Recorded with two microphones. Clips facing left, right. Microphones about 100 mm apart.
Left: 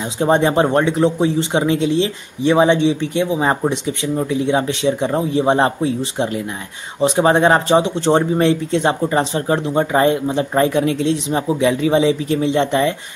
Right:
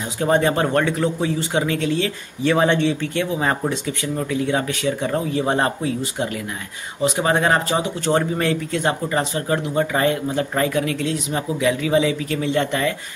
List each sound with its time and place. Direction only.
0.2 s speech: 20° left (ahead or behind)